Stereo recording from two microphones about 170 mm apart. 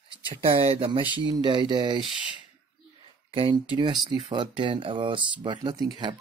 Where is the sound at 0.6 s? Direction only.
35° right (ahead or behind).